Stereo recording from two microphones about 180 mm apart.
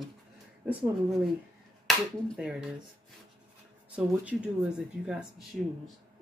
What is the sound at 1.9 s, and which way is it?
Speech, centre (ahead or behind).